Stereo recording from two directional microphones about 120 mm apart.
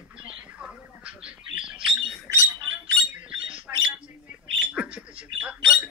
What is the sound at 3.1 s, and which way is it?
Speech, 10° right (ahead or behind).